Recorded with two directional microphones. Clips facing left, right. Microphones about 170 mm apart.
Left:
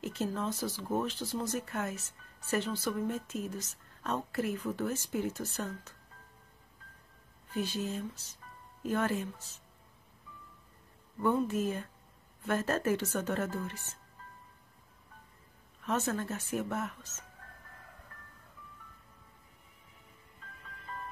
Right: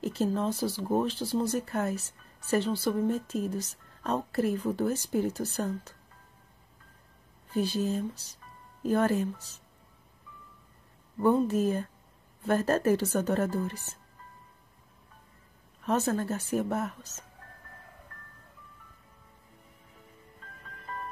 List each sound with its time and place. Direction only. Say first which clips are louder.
0.0 s speech: right 6 dB; 35° right (ahead or behind)
7.5 s speech: right 6 dB; 35° right (ahead or behind)
11.1 s speech: right 5 dB; 35° right (ahead or behind)
15.8 s speech: right 5 dB; 35° right (ahead or behind)